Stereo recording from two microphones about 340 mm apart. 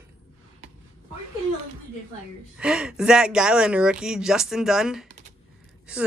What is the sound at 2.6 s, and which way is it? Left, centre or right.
Speech, centre.